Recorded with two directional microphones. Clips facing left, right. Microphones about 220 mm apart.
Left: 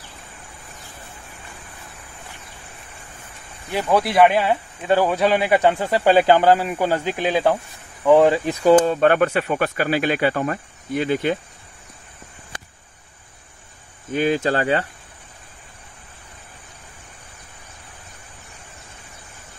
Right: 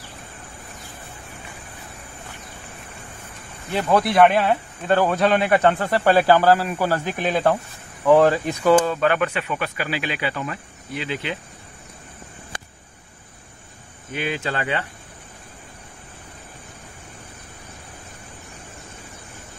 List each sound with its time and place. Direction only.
3.7 s a man's voice: centre (ahead or behind)
7.2 s speech: centre (ahead or behind)
8.6 s speech: 25° left (ahead or behind)
9.1 s speech: 45° left (ahead or behind)
14.1 s cricket: 40° left (ahead or behind)